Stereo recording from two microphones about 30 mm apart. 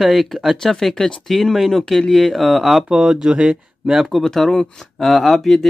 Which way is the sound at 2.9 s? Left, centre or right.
Right.